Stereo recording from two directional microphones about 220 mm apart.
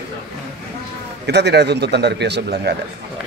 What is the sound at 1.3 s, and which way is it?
Speech, 50° right (ahead or behind).